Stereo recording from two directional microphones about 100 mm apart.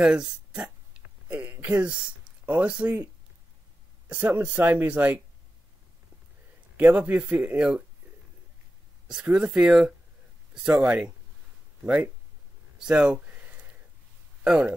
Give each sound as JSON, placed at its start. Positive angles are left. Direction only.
{"t": 0.0, "sound": "speech", "side_deg": -10}
{"t": 1.3, "sound": "a sound", "side_deg": -15}
{"t": 1.8, "sound": "speech", "side_deg": -10}
{"t": 4.1, "sound": "speech", "side_deg": -15}
{"t": 6.8, "sound": "speech", "side_deg": -15}
{"t": 9.0, "sound": "speech", "side_deg": -10}
{"t": 12.7, "sound": "a sound", "side_deg": -10}
{"t": 14.4, "sound": "speech", "side_deg": -10}